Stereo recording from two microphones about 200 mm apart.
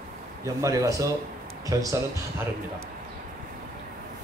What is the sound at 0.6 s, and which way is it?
A man's voice, 15° right (ahead or behind).